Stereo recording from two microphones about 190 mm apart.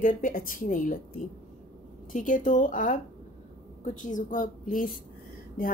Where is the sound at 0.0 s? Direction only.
45° left (ahead or behind).